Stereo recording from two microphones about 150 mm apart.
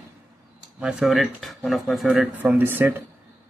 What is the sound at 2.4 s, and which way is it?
Speech, 10° right (ahead or behind).